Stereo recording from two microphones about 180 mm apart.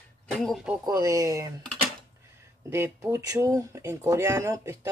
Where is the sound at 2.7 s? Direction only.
15° right (ahead or behind).